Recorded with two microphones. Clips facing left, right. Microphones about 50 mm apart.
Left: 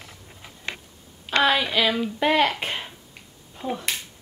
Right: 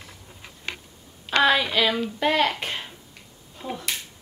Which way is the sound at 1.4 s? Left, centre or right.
Centre.